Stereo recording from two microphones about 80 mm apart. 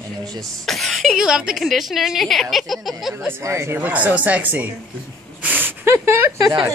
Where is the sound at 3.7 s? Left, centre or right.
Centre.